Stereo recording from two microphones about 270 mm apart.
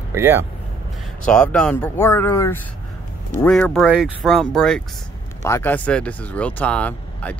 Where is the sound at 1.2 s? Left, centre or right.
Centre.